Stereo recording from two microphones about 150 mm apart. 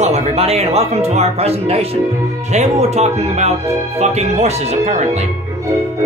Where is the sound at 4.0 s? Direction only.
45° right (ahead or behind).